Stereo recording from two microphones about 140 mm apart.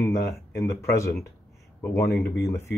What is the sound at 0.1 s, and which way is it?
Speech, 20° left (ahead or behind).